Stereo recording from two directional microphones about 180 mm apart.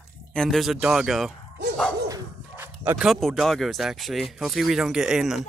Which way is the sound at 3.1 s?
Centre (ahead or behind).